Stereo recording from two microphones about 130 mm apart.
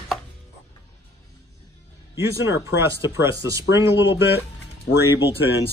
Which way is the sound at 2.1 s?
20° right (ahead or behind).